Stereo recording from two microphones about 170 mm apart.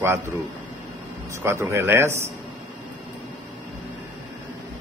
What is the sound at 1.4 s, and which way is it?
Speech, 15° right (ahead or behind).